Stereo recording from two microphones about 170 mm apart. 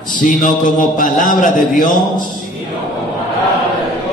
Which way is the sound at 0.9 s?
50° left (ahead or behind).